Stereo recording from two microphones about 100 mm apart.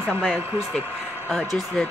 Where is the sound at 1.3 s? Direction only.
Centre (ahead or behind).